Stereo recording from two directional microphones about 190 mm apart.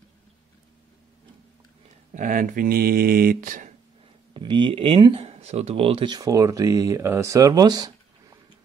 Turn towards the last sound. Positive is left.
turn(degrees=-20)  # may be behind; listen again after turning